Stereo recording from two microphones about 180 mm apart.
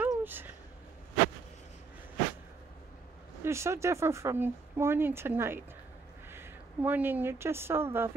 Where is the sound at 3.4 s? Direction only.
15° right (ahead or behind).